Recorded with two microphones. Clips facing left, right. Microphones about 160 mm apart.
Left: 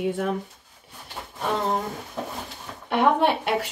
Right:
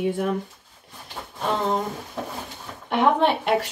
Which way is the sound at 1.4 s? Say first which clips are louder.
Right 1 dB; 20° right (ahead or behind).